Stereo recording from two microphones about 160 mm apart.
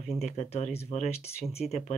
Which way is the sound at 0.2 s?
40° left (ahead or behind).